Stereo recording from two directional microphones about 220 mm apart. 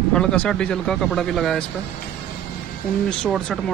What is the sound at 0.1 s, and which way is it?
Speech, 5° left (ahead or behind).